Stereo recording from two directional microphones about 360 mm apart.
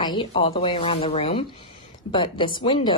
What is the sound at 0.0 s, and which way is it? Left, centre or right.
A woman's voice, centre.